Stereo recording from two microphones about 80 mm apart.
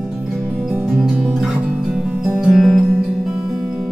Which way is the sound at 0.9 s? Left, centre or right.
Centre.